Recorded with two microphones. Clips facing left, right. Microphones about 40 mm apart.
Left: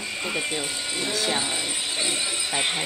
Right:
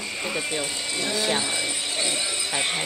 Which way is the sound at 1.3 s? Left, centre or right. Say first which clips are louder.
Right 1 dB; centre.